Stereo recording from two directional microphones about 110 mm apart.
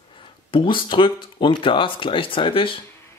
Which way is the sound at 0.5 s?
50° left (ahead or behind).